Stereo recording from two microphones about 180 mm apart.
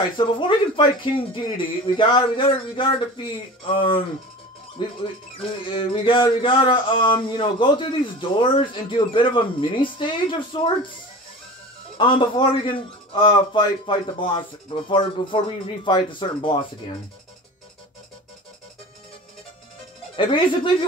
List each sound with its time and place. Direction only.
0.4 s speech: 25° left (ahead or behind)
12.0 s speech: 25° left (ahead or behind)
20.2 s speech: 30° left (ahead or behind)